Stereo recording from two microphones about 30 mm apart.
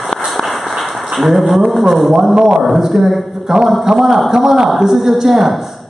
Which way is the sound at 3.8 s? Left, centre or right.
Centre.